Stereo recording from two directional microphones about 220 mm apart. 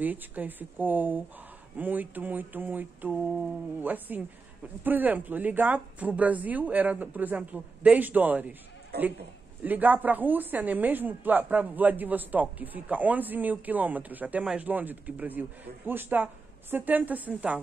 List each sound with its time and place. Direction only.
0.0 s a woman's voice: 10° right (ahead or behind)
8.9 s speech: 45° right (ahead or behind)
9.6 s a woman's voice: 10° right (ahead or behind)